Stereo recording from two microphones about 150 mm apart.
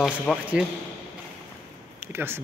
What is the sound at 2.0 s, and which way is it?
Speech, 15° right (ahead or behind).